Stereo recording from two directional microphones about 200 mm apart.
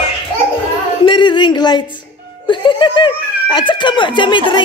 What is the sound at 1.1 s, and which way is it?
Speech, 25° left (ahead or behind).